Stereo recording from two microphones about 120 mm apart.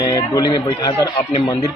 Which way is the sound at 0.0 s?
30° left (ahead or behind).